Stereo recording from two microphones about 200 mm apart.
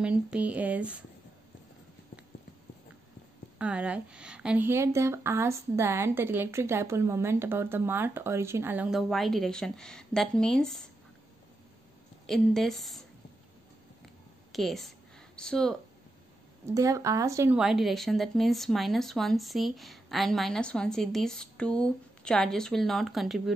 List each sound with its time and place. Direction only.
0.0 s a woman's voice: 5° right (ahead or behind)
3.5 s a woman's voice: 5° right (ahead or behind)
12.3 s speech: centre (ahead or behind)
14.5 s a woman's voice: centre (ahead or behind)
16.6 s a woman's voice: 15° right (ahead or behind)
17.6 s speech: centre (ahead or behind)